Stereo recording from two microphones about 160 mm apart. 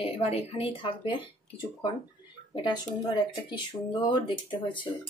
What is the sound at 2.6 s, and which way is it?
Speech, 30° left (ahead or behind).